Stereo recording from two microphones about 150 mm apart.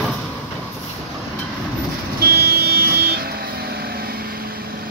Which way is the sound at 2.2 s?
90° right.